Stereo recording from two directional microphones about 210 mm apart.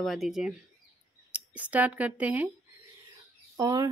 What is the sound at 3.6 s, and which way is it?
Speech, 20° right (ahead or behind).